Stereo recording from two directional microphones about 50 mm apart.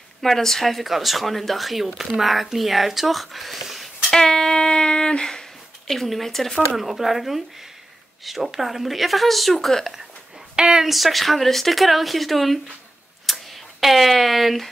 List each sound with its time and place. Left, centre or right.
0.2 s speech: centre
5.9 s speech: centre
6.7 s speech: centre
10.5 s a woman's voice: centre
10.9 s speech: centre